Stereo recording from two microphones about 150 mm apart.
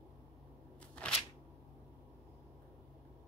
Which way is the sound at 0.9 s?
5° left (ahead or behind).